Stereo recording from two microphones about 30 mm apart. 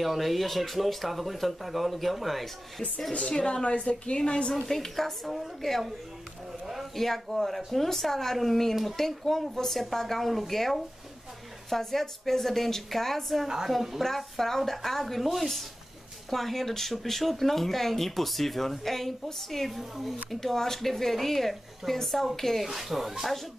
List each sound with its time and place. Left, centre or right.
0.0 s speech: centre
3.1 s a woman's voice: left
4.6 s speech: centre
5.2 s speech: centre
7.0 s speech: centre
16.3 s speech: centre
20.3 s speech: centre
22.7 s speech: centre